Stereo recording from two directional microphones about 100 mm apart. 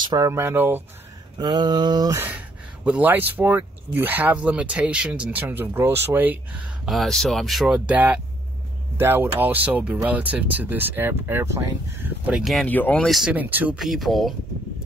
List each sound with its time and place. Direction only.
0.2 s speech: 30° right (ahead or behind)
1.4 s mantra: 45° right (ahead or behind)
2.1 s speech: 15° right (ahead or behind)
6.9 s speech: centre (ahead or behind); by 12.1 s 25° right (ahead or behind)
12.3 s speech: 10° right (ahead or behind)
12.6 s speech: 15° left (ahead or behind)
13.0 s speech: centre (ahead or behind)
13.3 s speech: 15° right (ahead or behind)
13.7 s speech: centre (ahead or behind)